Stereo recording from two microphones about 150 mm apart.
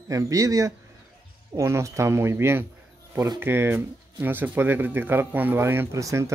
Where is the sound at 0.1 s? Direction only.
20° right (ahead or behind).